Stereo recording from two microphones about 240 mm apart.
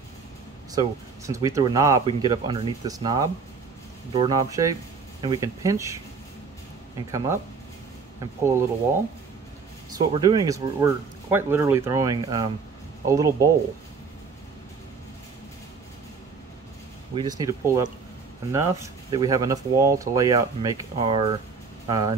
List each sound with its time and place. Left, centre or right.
0.7 s speech: centre
7.1 s speech: centre
8.5 s speech: centre
10.1 s speech: centre
17.1 s speech: centre